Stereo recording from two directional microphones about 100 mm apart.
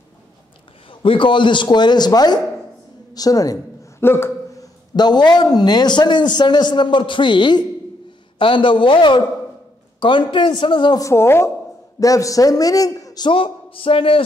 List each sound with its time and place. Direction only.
1.0 s a man's voice: 55° left (ahead or behind); by 3.5 s 40° left (ahead or behind)
4.0 s a sound: 25° left (ahead or behind)
4.9 s a man's voice: 45° left (ahead or behind)
11.0 s a woman's voice: 30° left (ahead or behind)
13.3 s speech: 65° left (ahead or behind)